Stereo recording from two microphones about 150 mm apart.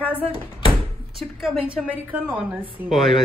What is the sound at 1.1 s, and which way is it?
A woman's voice, centre (ahead or behind).